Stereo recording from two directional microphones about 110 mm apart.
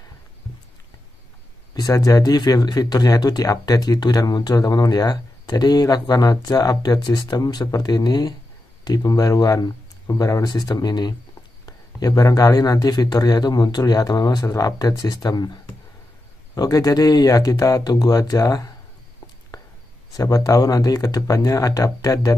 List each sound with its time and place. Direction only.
1.8 s speech: 35° left (ahead or behind)
19.5 s a sound: 35° left (ahead or behind)
20.2 s speech: 30° left (ahead or behind)